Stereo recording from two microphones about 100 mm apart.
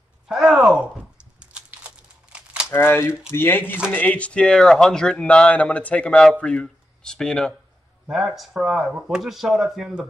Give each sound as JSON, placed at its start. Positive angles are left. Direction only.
{"t": 0.3, "sound": "speech", "side_deg": 0}
{"t": 1.4, "sound": "crumpling", "side_deg": -10}
{"t": 2.7, "sound": "speech", "side_deg": 25}